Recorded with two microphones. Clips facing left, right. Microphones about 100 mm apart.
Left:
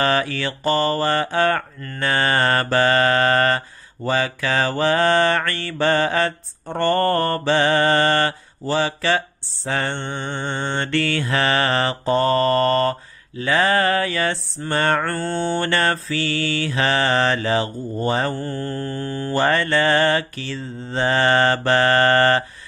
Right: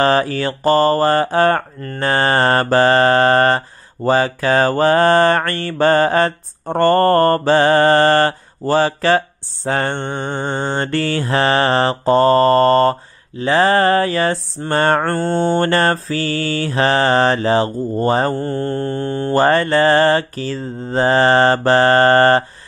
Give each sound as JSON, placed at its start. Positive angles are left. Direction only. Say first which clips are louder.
{"t": 0.0, "sound": "mantra", "louder": "right 5 dB", "side_deg": -35}